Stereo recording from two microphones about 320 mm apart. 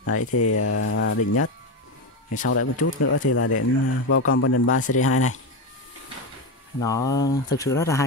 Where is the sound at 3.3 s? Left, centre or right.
Left.